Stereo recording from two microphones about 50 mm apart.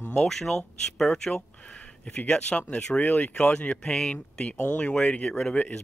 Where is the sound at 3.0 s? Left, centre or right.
Left.